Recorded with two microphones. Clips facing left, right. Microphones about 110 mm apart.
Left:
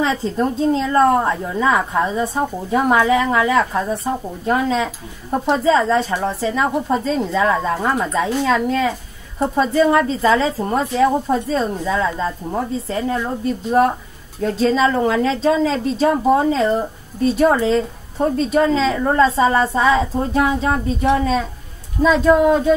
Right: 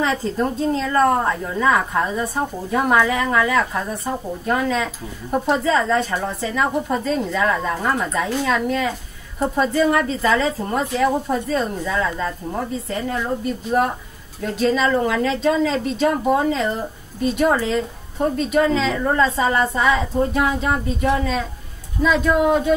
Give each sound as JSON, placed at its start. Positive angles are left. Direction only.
{"t": 0.0, "sound": "a woman's voice", "side_deg": 25}
{"t": 14.4, "sound": "a woman's voice", "side_deg": 30}